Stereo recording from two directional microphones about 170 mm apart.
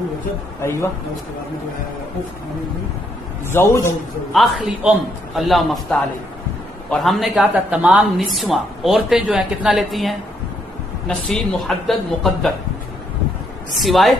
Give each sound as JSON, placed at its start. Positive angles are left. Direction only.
{"t": 0.6, "sound": "speech", "side_deg": 15}
{"t": 3.5, "sound": "speech", "side_deg": 15}
{"t": 4.3, "sound": "a man's voice", "side_deg": -5}
{"t": 13.7, "sound": "a man's voice", "side_deg": 0}